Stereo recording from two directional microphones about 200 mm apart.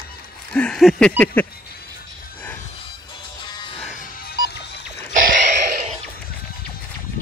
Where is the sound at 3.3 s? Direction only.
20° left (ahead or behind).